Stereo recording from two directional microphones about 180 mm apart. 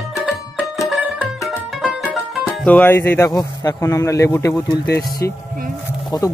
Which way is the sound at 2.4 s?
10° left (ahead or behind).